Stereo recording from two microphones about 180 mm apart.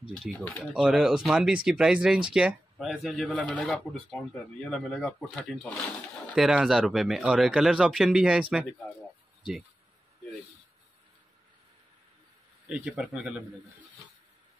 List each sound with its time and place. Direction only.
0.2 s speech: 5° right (ahead or behind)
12.6 s speech: 5° right (ahead or behind)